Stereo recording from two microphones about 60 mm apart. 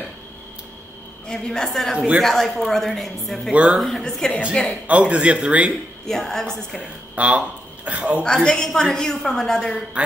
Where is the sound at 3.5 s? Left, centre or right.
Centre.